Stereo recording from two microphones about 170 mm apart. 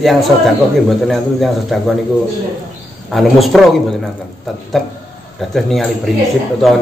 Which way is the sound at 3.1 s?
Centre (ahead or behind).